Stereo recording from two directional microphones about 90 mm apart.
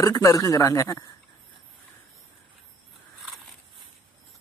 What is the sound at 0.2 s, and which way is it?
Speech, 35° left (ahead or behind).